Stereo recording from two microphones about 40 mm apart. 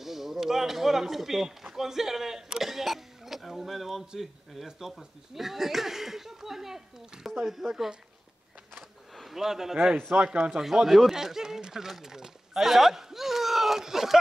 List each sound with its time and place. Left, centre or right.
0.0 s speech: centre
8.7 s a sound: centre
10.1 s speech: right
10.5 s speech: centre